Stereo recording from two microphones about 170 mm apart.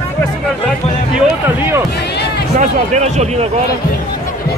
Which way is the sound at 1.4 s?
15° right (ahead or behind).